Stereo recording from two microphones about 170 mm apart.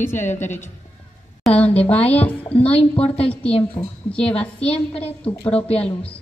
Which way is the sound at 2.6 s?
35° left (ahead or behind).